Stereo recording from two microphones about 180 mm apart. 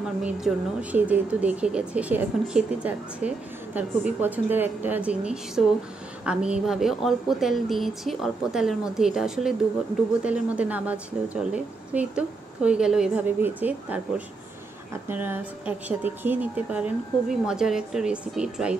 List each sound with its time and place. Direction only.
0.2 s speech: 5° right (ahead or behind)